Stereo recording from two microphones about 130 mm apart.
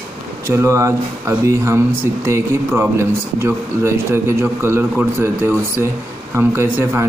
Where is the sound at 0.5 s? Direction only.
20° right (ahead or behind).